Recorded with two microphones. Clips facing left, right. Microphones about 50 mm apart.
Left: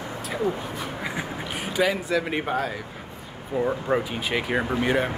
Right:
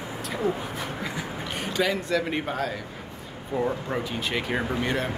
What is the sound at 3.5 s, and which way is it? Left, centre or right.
Speech, left.